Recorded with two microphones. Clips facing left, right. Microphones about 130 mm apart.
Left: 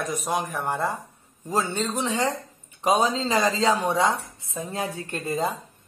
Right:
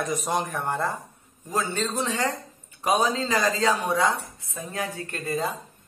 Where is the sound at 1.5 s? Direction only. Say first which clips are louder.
Left 2 dB; 25° left (ahead or behind).